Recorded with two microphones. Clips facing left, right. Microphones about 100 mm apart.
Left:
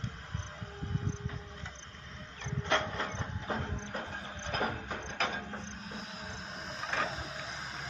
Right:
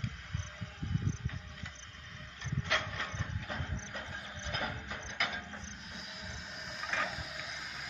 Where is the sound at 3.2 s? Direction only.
35° left (ahead or behind).